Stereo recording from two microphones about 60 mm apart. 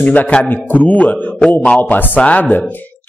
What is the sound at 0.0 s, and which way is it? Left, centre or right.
A man's voice, left.